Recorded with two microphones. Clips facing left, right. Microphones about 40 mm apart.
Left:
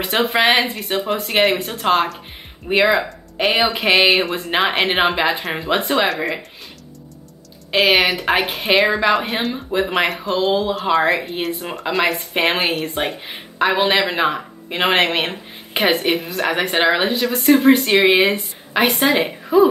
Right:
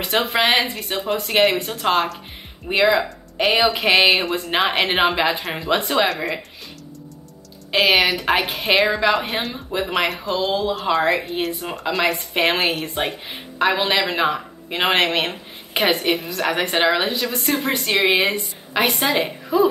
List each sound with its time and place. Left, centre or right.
0.0 s a woman's voice: centre
7.7 s a woman's voice: centre